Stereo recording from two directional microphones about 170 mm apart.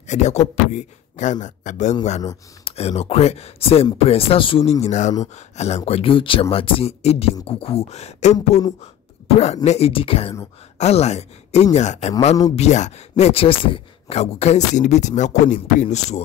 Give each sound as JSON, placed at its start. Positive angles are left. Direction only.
{"t": 0.0, "sound": "speech", "side_deg": 45}
{"t": 4.8, "sound": "speech", "side_deg": 45}